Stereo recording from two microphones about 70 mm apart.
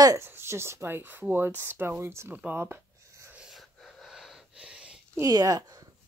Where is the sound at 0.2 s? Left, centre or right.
Right.